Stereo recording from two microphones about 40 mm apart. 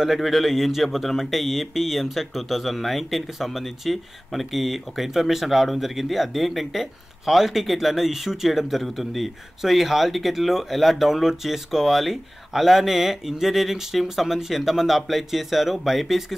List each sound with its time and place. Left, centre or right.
0.0 s speech: centre